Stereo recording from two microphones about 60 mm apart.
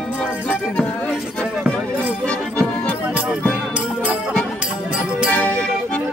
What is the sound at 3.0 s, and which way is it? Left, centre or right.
Music, centre.